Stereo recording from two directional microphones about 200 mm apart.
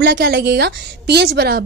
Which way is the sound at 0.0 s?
55° right (ahead or behind).